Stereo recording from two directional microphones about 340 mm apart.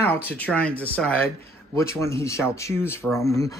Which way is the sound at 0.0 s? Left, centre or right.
Centre.